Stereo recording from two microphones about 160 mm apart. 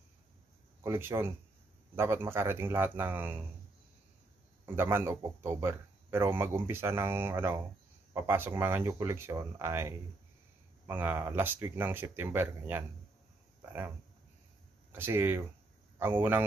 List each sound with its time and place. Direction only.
0.8 s a man's voice: 15° right (ahead or behind)
4.6 s a man's voice: 15° right (ahead or behind)
14.9 s a man's voice: 15° right (ahead or behind)